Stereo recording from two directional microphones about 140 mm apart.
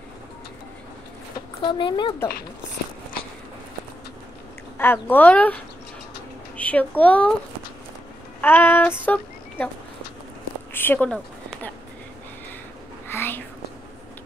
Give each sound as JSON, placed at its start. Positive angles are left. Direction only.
{"t": 1.6, "sound": "speech", "side_deg": 35}
{"t": 4.7, "sound": "speech", "side_deg": 15}
{"t": 6.5, "sound": "a sound", "side_deg": 10}
{"t": 7.0, "sound": "speech", "side_deg": 10}
{"t": 8.4, "sound": "child singing", "side_deg": 15}
{"t": 10.7, "sound": "a sound", "side_deg": 15}
{"t": 13.1, "sound": "whispering", "side_deg": 15}